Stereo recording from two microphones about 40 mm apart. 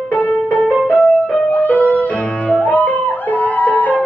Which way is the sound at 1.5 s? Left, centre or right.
Left.